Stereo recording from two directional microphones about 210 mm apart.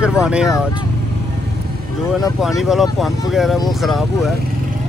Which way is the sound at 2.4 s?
Centre (ahead or behind).